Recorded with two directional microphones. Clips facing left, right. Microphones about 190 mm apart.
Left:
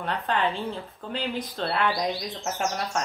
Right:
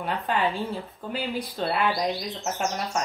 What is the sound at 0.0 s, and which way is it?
Speech, 5° right (ahead or behind).